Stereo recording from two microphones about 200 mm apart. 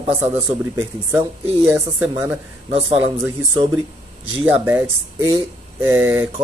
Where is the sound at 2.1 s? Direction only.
15° right (ahead or behind).